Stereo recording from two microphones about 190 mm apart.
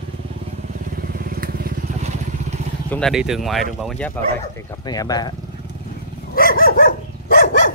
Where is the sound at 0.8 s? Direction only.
50° right (ahead or behind).